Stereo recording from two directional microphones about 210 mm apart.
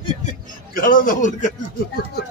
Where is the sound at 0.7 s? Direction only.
40° left (ahead or behind).